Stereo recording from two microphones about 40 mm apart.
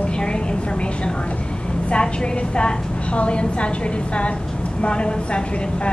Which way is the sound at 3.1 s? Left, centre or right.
Left.